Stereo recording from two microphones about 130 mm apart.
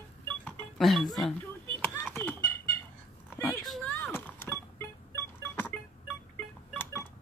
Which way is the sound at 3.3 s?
20° left (ahead or behind).